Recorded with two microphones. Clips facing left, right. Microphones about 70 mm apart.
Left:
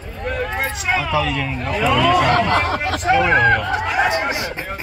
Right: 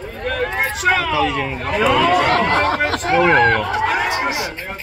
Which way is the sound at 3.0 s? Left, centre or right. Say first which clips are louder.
Right 1 dB; right.